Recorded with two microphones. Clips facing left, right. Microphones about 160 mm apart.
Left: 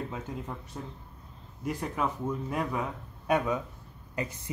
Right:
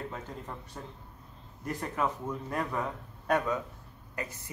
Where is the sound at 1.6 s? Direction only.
5° left (ahead or behind).